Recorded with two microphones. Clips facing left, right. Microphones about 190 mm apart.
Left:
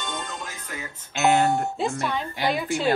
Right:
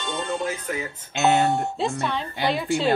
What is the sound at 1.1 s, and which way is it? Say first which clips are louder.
Speech: even; 20° right (ahead or behind).